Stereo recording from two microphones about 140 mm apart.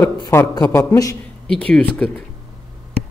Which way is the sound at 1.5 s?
5° left (ahead or behind).